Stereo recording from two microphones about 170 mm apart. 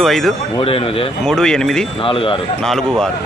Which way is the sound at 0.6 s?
35° left (ahead or behind).